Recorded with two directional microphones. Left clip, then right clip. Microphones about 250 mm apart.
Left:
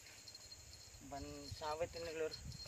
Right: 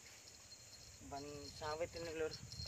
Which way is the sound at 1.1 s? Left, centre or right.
Centre.